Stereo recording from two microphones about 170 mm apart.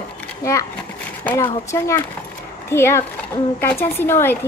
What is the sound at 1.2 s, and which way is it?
A woman's voice, 15° left (ahead or behind).